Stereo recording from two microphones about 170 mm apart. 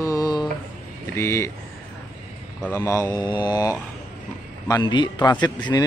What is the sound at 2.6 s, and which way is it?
A man's voice, 15° left (ahead or behind).